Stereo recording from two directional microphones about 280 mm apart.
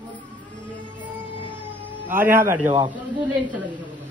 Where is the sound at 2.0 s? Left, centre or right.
Centre.